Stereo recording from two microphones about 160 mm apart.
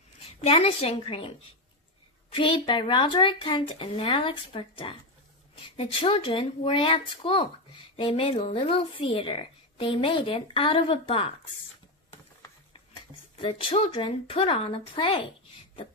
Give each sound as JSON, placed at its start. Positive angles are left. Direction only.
{"t": 0.2, "sound": "a woman's voice", "side_deg": 40}
{"t": 2.3, "sound": "a woman's voice", "side_deg": 30}
{"t": 13.4, "sound": "a woman's voice", "side_deg": 35}